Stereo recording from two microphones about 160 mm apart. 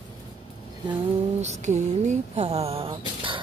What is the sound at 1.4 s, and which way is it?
Speech, 45° right (ahead or behind).